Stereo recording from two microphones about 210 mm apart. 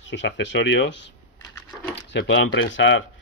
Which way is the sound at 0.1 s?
60° left (ahead or behind).